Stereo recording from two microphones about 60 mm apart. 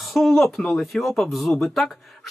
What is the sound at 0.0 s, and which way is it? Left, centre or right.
A man's voice, centre.